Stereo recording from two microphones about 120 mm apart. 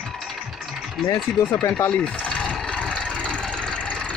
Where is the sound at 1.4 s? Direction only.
5° left (ahead or behind).